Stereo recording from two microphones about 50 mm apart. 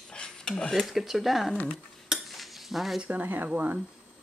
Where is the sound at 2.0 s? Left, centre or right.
Centre.